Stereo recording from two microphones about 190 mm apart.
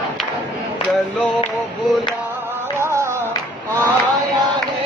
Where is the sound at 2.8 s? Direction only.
15° right (ahead or behind).